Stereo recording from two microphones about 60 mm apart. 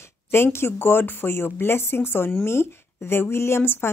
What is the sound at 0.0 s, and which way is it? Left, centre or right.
Speech, left.